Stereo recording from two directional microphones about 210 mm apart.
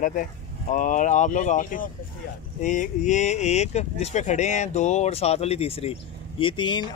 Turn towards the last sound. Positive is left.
turn(degrees=20)  # may be behind; listen again after turning